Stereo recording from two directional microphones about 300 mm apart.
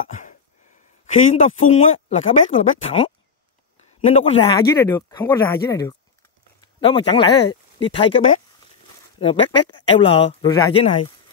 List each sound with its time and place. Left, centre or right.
1.0 s a man's voice: left